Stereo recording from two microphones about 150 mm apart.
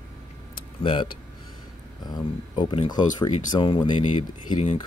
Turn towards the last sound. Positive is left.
turn(degrees=40)  # may be behind; listen again after turning